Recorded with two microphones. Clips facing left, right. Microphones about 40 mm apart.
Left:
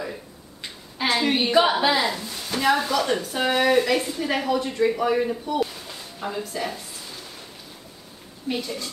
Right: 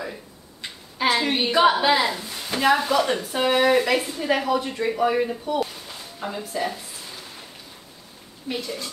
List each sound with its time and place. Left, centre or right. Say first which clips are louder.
0.9 s a woman's voice: even; centre
2.0 s a sound: even; centre
2.9 s a woman's voice: right 2 dB; centre
8.5 s speech: left 2 dB; centre